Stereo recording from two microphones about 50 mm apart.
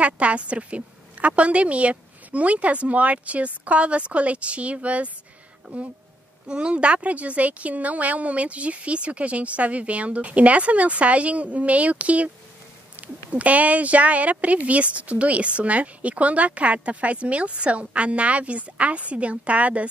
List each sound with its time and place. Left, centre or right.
0.0 s speech: right
6.4 s speech: centre